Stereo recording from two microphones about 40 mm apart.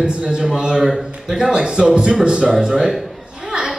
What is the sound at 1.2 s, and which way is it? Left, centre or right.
A man's voice, centre.